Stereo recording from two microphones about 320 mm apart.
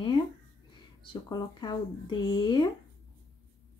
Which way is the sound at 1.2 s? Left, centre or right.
Centre.